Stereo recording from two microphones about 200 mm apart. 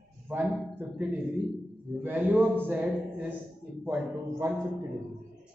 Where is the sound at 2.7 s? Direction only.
10° right (ahead or behind).